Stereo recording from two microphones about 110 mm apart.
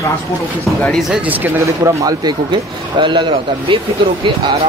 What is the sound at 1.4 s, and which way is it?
Speech, 25° right (ahead or behind).